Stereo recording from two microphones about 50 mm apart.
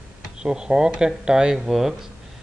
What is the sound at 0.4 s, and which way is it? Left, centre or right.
Speech, centre.